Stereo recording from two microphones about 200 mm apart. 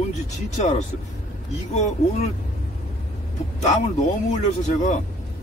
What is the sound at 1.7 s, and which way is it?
Speech, 35° left (ahead or behind).